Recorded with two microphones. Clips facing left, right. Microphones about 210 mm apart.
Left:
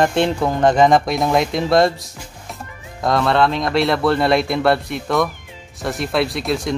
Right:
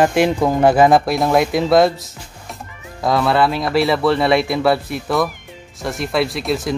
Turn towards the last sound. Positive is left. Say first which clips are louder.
# right 1 dB
turn(degrees=0)  # may be behind; listen again after turning